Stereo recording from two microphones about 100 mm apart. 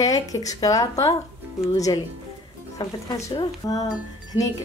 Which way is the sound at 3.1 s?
40° left (ahead or behind).